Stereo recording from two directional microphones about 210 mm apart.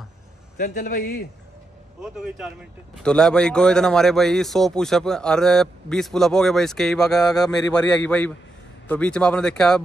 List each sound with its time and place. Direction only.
0.6 s a man's voice: 40° left (ahead or behind)
2.0 s speech: 5° right (ahead or behind)